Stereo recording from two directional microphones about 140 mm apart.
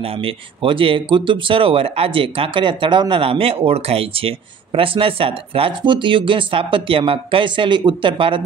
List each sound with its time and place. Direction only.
0.2 s speech: 40° right (ahead or behind)